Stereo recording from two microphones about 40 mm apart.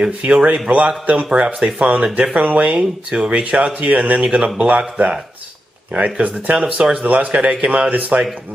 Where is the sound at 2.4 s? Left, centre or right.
Right.